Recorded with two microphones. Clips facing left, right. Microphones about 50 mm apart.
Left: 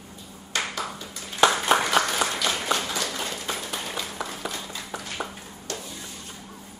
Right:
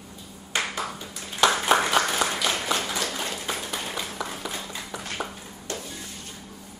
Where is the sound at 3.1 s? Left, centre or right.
Centre.